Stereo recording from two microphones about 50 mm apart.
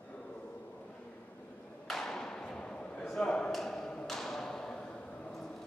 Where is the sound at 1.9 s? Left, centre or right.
Centre.